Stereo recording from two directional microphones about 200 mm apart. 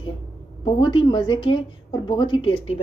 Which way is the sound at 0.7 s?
25° left (ahead or behind).